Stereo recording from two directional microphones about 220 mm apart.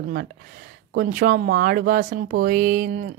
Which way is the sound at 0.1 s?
40° right (ahead or behind).